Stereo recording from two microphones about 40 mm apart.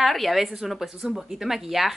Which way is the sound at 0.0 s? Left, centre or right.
Centre.